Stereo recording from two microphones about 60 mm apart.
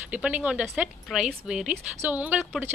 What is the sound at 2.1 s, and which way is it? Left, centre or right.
Speech, right.